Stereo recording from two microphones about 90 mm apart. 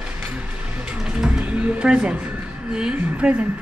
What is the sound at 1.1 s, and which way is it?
A woman's voice, 10° right (ahead or behind).